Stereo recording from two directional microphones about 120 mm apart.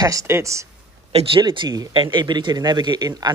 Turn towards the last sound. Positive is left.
turn(degrees=-35)  # may be behind; listen again after turning